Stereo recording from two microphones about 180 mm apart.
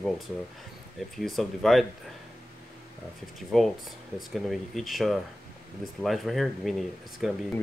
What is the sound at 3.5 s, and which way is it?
Speech, centre (ahead or behind).